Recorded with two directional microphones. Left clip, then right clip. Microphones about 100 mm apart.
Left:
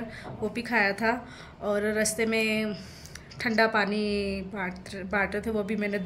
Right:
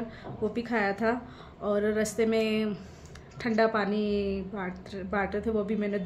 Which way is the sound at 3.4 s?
20° right (ahead or behind).